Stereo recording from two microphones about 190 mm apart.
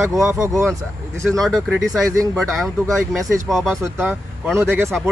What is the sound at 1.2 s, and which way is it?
Speech, centre (ahead or behind).